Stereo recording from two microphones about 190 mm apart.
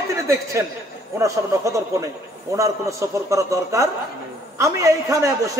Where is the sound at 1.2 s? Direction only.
15° right (ahead or behind).